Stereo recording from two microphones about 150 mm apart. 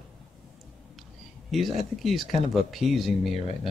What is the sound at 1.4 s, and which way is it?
Speech, centre (ahead or behind).